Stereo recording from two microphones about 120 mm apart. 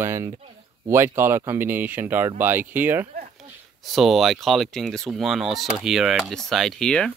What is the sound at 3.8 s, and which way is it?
Speech, centre (ahead or behind).